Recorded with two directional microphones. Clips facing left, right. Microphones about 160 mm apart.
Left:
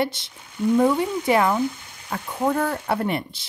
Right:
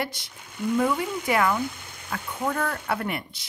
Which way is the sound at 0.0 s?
25° left (ahead or behind).